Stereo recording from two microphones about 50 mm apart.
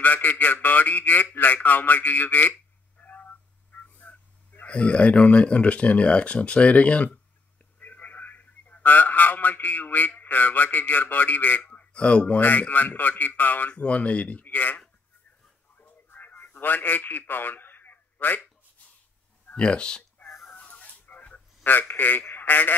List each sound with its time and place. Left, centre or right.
0.0 s a man's voice: left
3.0 s a sound: left
4.6 s a man's voice: left
12.4 s a man's voice: left
13.7 s speech: left
15.8 s radio: left
19.5 s speech: centre
20.5 s a sound: left